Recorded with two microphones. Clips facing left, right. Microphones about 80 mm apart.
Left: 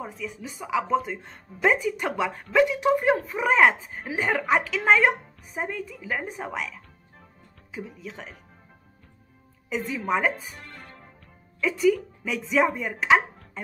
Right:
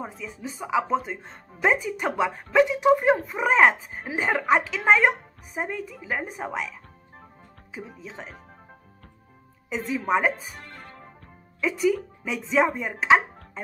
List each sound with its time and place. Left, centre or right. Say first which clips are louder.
0.0 s speech: even; right
9.7 s speech: right 1 dB; centre
11.6 s speech: left 1 dB; centre